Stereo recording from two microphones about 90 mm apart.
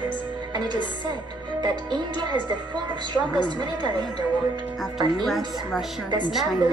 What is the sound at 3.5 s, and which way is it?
Speech, 60° right (ahead or behind).